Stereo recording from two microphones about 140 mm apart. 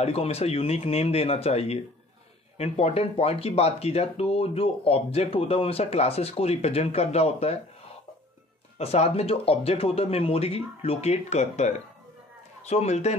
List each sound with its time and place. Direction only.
0.0 s speech: 45° left (ahead or behind)
8.7 s speech: 50° left (ahead or behind)